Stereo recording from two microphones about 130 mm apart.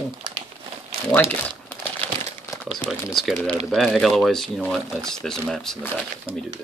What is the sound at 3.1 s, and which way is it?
Speech, centre (ahead or behind).